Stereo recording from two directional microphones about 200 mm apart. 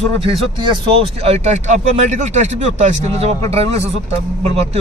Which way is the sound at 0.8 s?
30° right (ahead or behind).